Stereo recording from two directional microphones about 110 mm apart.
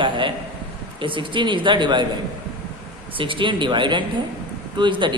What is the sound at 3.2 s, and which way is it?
A man's voice, 50° right (ahead or behind).